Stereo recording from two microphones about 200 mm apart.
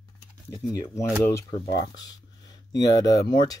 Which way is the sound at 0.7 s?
15° left (ahead or behind).